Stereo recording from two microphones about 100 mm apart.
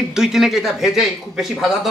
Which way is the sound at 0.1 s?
5° right (ahead or behind).